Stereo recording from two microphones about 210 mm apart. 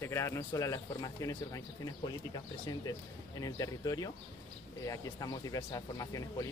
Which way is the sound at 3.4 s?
15° left (ahead or behind).